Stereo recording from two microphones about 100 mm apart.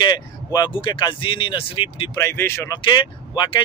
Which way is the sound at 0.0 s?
45° left (ahead or behind).